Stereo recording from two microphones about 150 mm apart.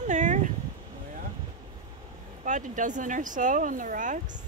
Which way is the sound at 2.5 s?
60° right (ahead or behind).